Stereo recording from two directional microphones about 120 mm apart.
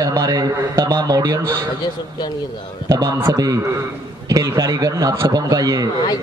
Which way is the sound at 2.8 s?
30° right (ahead or behind).